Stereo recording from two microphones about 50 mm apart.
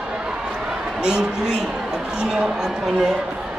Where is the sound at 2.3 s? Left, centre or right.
Centre.